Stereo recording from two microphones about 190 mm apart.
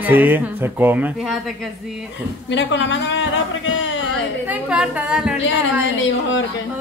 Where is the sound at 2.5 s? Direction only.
70° left (ahead or behind).